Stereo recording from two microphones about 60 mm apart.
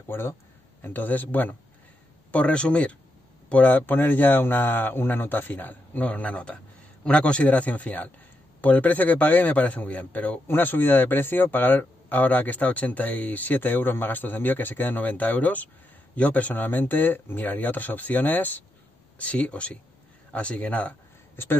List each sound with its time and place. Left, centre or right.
0.1 s speech: left
0.8 s speech: left